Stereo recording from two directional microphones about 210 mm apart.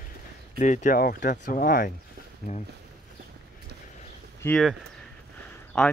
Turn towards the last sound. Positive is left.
turn(degrees=5)  # may be behind; listen again after turning